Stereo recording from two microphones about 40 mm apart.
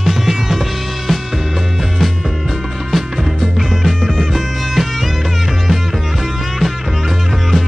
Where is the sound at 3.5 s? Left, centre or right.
Centre.